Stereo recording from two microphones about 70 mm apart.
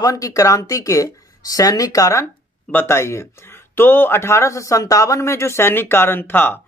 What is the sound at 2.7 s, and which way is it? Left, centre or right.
A man's voice, left.